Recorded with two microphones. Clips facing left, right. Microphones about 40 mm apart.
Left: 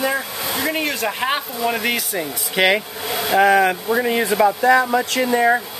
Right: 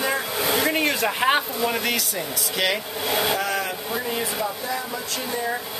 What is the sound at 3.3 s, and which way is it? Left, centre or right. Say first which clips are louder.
Speech: left 11 dB; left.